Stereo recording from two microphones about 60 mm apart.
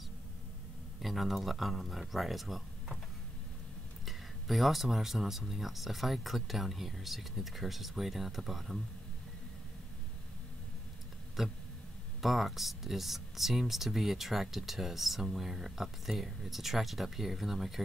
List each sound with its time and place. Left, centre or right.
1.0 s speech: centre
4.0 s speech: centre
11.4 s speech: centre